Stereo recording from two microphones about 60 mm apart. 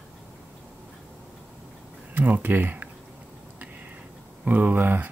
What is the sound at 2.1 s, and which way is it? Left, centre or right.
Speech, right.